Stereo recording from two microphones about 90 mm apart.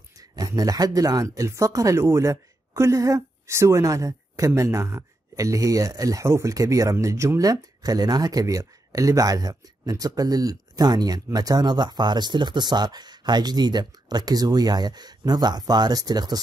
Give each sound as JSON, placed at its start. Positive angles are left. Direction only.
{"t": 0.2, "sound": "speech", "side_deg": -40}